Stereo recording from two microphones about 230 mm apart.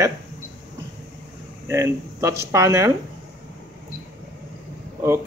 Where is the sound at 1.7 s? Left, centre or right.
Centre.